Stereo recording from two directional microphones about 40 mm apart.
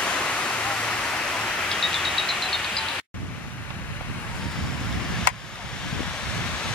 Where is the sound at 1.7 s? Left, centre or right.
Centre.